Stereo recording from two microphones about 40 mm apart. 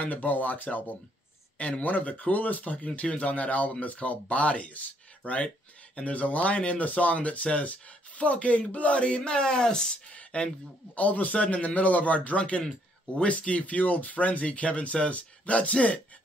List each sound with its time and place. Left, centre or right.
0.0 s speech: left; by 9.9 s centre
10.1 s a sound: left
11.0 s speech: left